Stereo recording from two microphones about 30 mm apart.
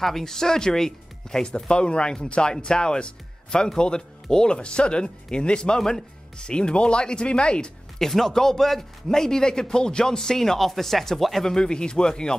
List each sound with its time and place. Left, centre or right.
0.0 s a man's voice: centre
1.4 s speech: left
8.0 s a man's voice: centre
11.4 s speech: left